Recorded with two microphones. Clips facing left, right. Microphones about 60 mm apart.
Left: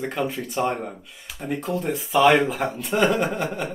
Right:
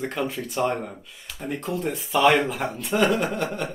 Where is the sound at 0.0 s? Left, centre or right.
Centre.